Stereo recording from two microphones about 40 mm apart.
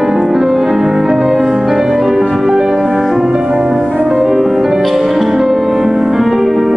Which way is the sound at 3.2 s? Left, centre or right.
Centre.